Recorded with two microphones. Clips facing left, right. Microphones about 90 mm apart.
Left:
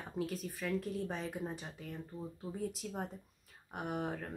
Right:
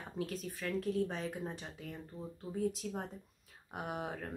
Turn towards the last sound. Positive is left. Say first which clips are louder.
# left 2 dB
turn(degrees=0)  # may be behind; listen again after turning